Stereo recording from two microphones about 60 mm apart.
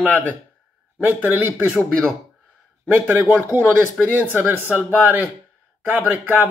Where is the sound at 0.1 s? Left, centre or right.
Left.